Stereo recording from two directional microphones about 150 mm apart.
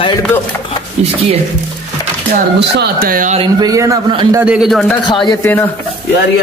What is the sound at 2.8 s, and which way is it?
Speech, 75° right (ahead or behind).